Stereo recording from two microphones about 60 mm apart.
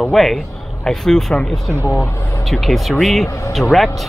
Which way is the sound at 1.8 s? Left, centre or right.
Left.